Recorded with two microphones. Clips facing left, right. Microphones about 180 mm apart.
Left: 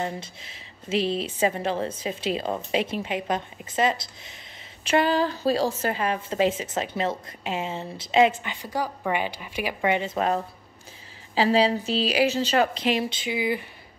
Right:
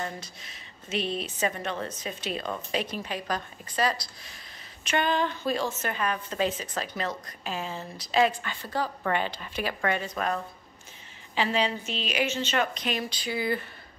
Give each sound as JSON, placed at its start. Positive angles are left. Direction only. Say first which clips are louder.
{"t": 0.0, "sound": "a woman's voice", "louder": "left 5 dB", "side_deg": 25}